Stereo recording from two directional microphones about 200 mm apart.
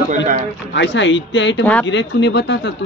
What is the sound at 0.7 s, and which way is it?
Speech, 60° left (ahead or behind).